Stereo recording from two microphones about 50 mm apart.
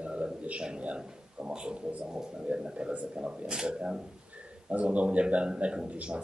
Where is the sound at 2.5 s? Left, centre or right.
Centre.